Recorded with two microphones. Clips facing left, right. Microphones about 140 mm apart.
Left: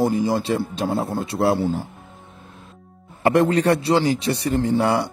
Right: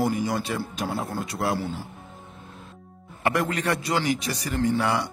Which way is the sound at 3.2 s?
30° left (ahead or behind).